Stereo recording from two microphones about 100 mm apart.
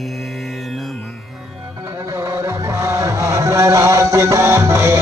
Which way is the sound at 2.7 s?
30° right (ahead or behind).